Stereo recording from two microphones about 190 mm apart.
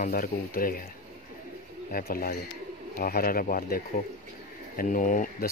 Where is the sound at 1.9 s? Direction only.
50° left (ahead or behind).